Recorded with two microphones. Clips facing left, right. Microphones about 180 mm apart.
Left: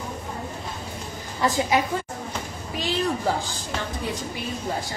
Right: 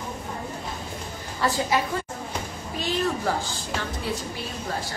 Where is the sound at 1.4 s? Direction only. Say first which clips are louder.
Left 2 dB; 20° left (ahead or behind).